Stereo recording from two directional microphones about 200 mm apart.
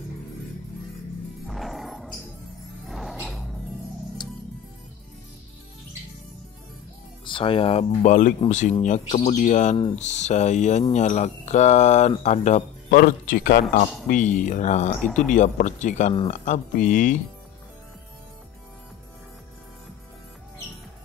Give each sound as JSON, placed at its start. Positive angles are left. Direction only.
{"t": 1.5, "sound": "music", "side_deg": 0}
{"t": 7.2, "sound": "speech", "side_deg": 25}